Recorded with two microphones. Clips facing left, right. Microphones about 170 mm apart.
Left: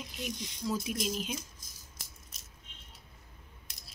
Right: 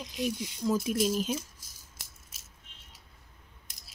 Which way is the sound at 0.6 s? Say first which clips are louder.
Right 6 dB; 50° right (ahead or behind).